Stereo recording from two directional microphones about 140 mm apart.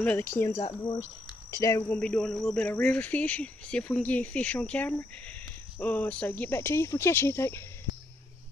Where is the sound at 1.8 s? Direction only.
5° left (ahead or behind).